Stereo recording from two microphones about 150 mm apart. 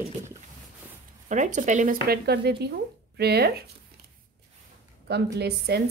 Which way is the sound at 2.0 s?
90° right.